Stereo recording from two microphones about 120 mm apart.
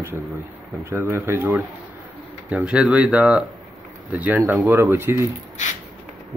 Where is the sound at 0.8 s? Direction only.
20° right (ahead or behind).